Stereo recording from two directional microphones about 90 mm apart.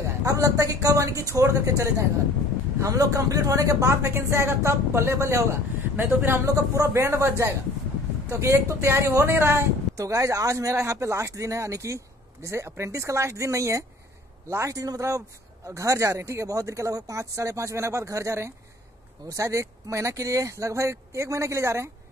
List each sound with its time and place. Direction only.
0.2 s speech: 40° right (ahead or behind); by 6.4 s 25° right (ahead or behind)
6.4 s speech: 40° right (ahead or behind)